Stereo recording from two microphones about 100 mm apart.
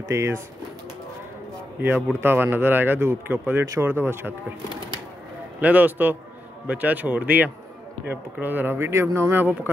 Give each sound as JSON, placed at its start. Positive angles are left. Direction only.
{"t": 0.1, "sound": "speech", "side_deg": -25}
{"t": 1.8, "sound": "speech", "side_deg": -20}
{"t": 5.6, "sound": "speech", "side_deg": -15}